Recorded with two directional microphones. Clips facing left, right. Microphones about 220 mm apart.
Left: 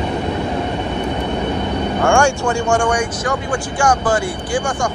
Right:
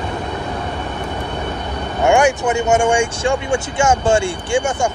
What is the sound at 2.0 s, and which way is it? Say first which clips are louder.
Speech: right 2 dB; 20° right (ahead or behind).